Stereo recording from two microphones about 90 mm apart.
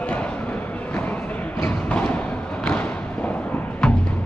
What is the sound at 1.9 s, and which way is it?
Thump, 15° left (ahead or behind).